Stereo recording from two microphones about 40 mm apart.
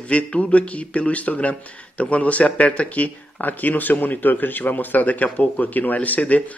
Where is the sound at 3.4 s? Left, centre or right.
Left.